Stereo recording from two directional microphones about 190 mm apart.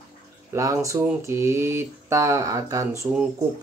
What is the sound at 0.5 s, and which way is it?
Speech, 15° right (ahead or behind).